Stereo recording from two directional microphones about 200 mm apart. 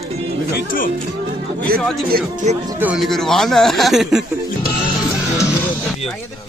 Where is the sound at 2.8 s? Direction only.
Centre (ahead or behind).